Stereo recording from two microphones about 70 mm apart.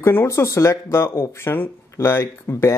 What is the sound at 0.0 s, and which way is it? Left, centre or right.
Speech, left.